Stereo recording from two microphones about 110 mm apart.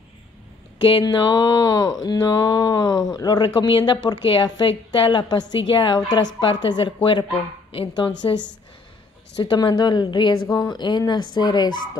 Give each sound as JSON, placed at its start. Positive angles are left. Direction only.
{"t": 1.0, "sound": "speech", "side_deg": 40}
{"t": 3.4, "sound": "a woman's voice", "side_deg": 50}
{"t": 7.9, "sound": "a woman's voice", "side_deg": 45}
{"t": 9.4, "sound": "a woman's voice", "side_deg": 45}